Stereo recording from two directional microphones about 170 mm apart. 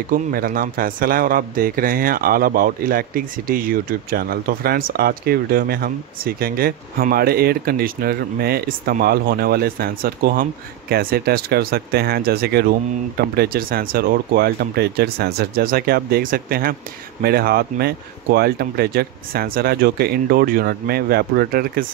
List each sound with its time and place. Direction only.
0.1 s a man's voice: 55° right (ahead or behind)